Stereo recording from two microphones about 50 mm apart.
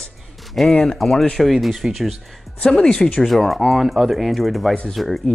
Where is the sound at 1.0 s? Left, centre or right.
Centre.